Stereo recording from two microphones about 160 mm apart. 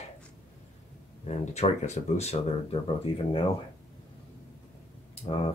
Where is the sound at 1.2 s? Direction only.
45° left (ahead or behind).